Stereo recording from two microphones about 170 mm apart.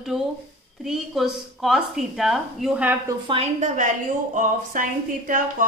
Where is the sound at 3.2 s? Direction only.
35° right (ahead or behind).